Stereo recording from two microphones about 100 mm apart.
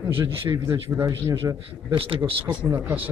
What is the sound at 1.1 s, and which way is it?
Speech, 35° right (ahead or behind).